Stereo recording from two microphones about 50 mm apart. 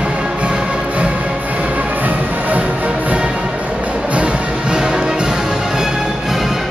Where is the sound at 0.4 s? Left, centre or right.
Right.